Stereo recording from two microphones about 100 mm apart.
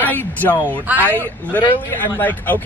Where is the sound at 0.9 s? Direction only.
20° right (ahead or behind).